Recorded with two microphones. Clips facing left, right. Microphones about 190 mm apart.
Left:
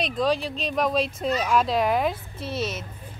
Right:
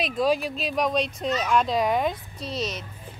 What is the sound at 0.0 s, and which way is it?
A woman's voice, 5° right (ahead or behind).